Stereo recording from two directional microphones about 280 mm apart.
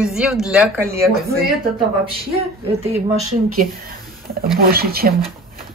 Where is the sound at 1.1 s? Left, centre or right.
Right.